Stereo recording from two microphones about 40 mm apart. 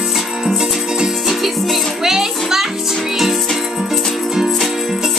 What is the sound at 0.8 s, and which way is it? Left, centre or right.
Music, centre.